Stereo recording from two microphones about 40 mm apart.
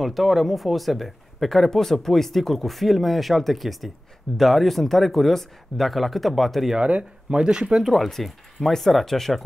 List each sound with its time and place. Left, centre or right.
0.0 s speech: centre
6.8 s speech: right
7.8 s speech: centre